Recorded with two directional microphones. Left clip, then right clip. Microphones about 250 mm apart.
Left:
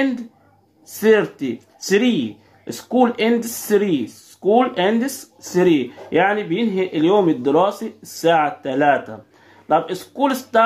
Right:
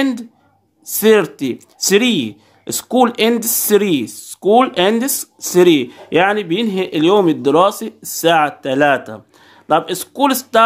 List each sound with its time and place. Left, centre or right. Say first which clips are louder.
0.9 s speech: right 3 dB; right